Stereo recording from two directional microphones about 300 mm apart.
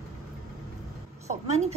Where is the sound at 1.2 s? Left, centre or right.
Right.